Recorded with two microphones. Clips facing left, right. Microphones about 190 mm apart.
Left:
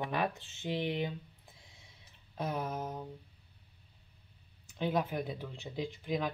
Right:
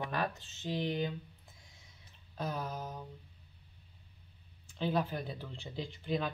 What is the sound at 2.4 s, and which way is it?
Speech, 25° left (ahead or behind).